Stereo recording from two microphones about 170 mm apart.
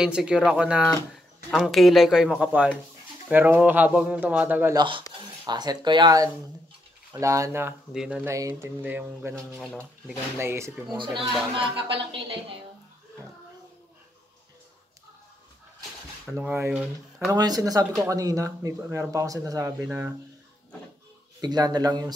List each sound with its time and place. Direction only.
0.0 s speech: 5° right (ahead or behind)
4.7 s speech: 30° right (ahead or behind)
7.9 s speech: 5° right (ahead or behind)
8.3 s speech: 15° right (ahead or behind)
9.5 s speech: 5° left (ahead or behind)
10.0 s speech: 15° right (ahead or behind)
11.0 s speech: 30° right (ahead or behind)
16.3 s speech: 10° right (ahead or behind)
17.3 s speech: 20° right (ahead or behind)
21.4 s speech: 25° right (ahead or behind)